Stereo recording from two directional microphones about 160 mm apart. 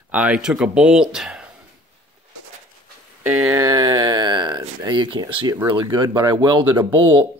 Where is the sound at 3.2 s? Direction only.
10° right (ahead or behind).